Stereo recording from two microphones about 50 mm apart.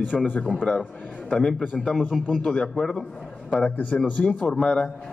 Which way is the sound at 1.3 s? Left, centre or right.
Centre.